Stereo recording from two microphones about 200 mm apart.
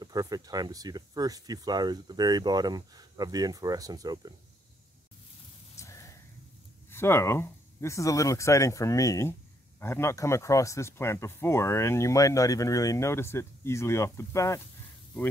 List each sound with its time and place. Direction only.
0.0 s speech: 20° right (ahead or behind)
5.8 s a sound: 15° left (ahead or behind)
6.9 s speech: 10° left (ahead or behind)